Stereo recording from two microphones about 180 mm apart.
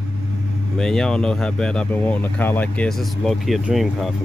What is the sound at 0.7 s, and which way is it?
Speech, 5° left (ahead or behind).